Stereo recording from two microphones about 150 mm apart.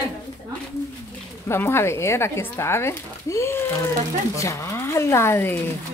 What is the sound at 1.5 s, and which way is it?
Speech, 15° left (ahead or behind).